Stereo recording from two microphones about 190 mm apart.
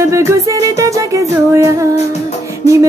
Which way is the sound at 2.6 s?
35° left (ahead or behind).